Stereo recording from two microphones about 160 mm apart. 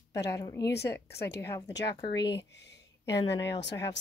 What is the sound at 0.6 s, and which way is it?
Speech, 25° left (ahead or behind).